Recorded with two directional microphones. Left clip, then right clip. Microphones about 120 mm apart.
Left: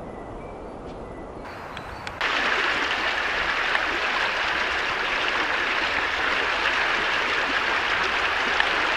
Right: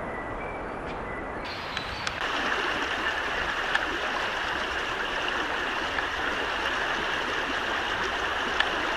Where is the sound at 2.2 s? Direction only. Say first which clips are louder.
Left 6 dB; 15° left (ahead or behind).